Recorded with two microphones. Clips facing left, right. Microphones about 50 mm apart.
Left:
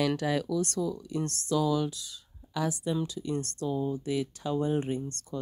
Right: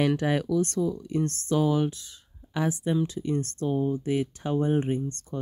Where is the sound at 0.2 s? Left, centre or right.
Right.